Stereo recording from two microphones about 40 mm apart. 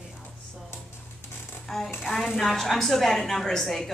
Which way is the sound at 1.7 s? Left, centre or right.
Centre.